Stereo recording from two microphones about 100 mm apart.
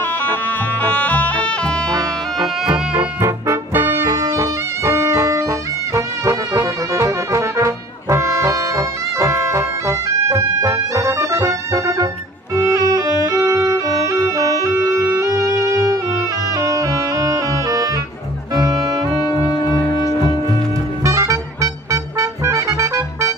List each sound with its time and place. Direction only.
0.8 s music: 15° left (ahead or behind)
1.9 s music: 30° right (ahead or behind)
2.4 s music: 10° right (ahead or behind)
3.2 s music: 25° right (ahead or behind)
4.1 s brass instrument: 30° right (ahead or behind)
12.5 s music: 35° right (ahead or behind)
16.5 s saxophone: 35° right (ahead or behind)
18.5 s music: 35° right (ahead or behind)
19.6 s cello: 40° left (ahead or behind)
21.0 s music: 30° right (ahead or behind)